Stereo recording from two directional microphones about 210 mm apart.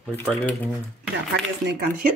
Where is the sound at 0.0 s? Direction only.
10° left (ahead or behind).